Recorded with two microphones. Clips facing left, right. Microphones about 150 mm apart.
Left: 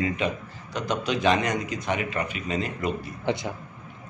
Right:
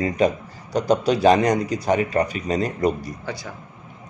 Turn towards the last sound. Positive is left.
turn(degrees=20)  # may be behind; listen again after turning